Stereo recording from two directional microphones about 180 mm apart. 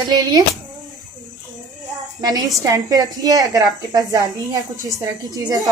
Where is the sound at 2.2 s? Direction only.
20° right (ahead or behind).